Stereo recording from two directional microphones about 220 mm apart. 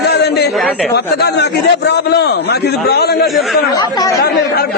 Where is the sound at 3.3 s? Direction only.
Centre (ahead or behind).